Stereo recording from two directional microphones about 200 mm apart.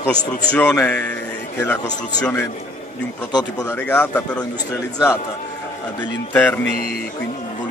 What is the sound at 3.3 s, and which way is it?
Speech, 20° left (ahead or behind).